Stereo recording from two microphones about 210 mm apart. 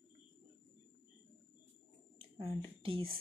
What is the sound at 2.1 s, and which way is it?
Speech, 25° right (ahead or behind).